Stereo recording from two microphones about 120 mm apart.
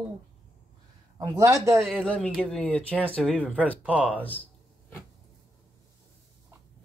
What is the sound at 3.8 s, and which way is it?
Speech, 10° right (ahead or behind).